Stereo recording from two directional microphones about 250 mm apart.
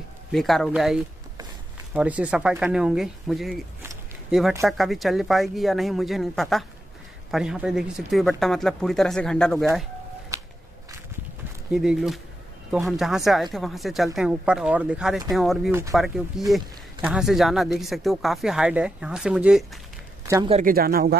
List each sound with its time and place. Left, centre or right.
0.3 s speech: centre
11.7 s speech: centre
20.5 s speech: right